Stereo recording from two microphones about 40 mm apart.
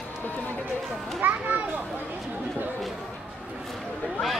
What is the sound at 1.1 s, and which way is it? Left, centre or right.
Speech, right.